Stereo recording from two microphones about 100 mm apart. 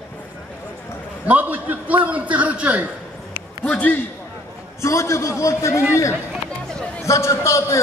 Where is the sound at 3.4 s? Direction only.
15° left (ahead or behind).